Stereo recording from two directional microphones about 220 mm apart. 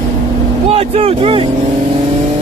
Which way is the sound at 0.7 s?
30° right (ahead or behind).